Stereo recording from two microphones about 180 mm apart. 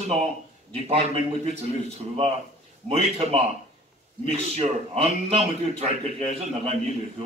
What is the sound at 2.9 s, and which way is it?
A man's voice, 35° right (ahead or behind).